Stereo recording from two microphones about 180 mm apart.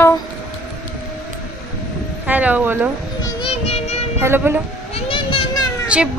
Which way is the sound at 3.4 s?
35° left (ahead or behind).